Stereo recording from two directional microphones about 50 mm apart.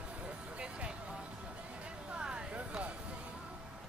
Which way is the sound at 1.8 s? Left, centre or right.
Right.